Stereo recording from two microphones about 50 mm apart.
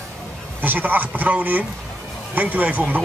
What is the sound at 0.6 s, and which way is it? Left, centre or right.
Speech, right.